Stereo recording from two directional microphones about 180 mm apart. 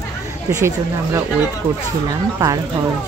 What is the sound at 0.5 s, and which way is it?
Speech, 15° right (ahead or behind).